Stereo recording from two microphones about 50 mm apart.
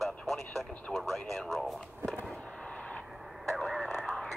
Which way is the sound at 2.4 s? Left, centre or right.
Centre.